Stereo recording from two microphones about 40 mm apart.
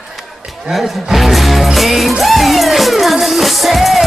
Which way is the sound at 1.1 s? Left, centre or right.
Centre.